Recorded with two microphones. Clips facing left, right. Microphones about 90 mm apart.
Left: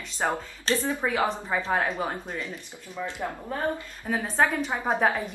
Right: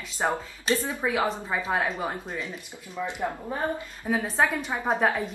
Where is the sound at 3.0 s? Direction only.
20° right (ahead or behind).